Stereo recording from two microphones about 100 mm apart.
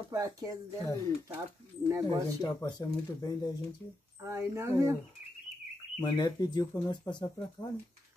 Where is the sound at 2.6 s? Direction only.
45° left (ahead or behind).